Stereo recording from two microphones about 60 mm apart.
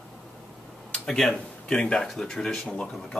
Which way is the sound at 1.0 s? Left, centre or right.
Centre.